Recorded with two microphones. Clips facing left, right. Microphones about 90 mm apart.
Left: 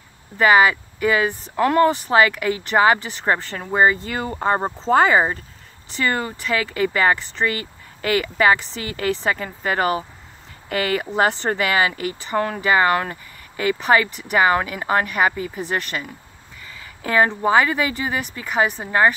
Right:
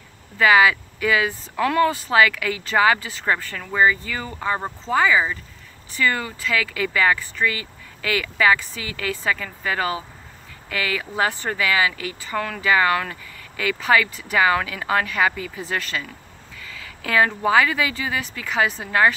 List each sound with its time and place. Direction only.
0.4 s speech: 35° left (ahead or behind)
4.9 s speech: 45° left (ahead or behind)
15.7 s speech: 20° left (ahead or behind)